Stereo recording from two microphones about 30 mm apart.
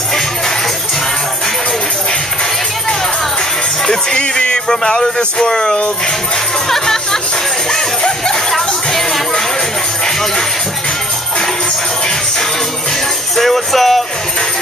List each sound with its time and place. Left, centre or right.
3.8 s music: centre
4.2 s music: left
5.5 s speech: left
6.7 s music: centre
13.4 s music: centre